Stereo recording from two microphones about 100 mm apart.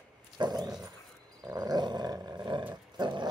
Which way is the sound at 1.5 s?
40° right (ahead or behind).